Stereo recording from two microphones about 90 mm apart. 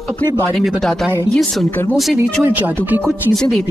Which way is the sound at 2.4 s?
20° right (ahead or behind).